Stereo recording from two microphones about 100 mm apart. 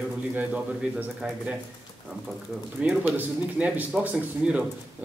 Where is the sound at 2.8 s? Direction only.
15° right (ahead or behind).